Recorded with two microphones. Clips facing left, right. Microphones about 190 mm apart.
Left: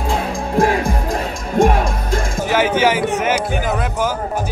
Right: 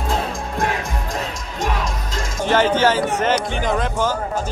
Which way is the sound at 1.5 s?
55° left (ahead or behind).